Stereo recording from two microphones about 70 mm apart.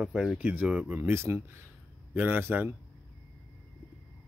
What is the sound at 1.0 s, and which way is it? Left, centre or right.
Speech, right.